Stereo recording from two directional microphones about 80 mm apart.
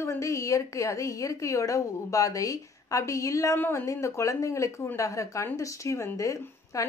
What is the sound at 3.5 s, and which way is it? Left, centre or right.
Speech, left.